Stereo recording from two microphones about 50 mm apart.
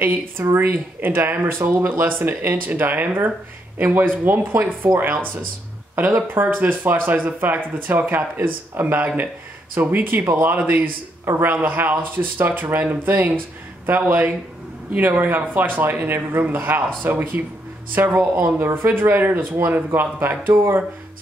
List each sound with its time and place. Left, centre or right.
0.0 s speech: right